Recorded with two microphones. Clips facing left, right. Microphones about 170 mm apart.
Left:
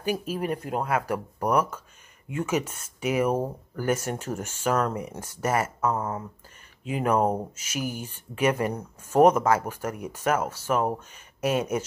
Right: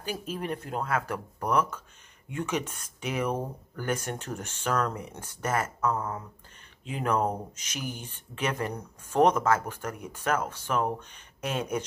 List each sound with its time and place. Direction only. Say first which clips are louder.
0.0 s speech: left 6 dB; 10° left (ahead or behind)
5.9 s speech: left 3 dB; 25° left (ahead or behind)
6.8 s speech: left 4 dB; 5° left (ahead or behind)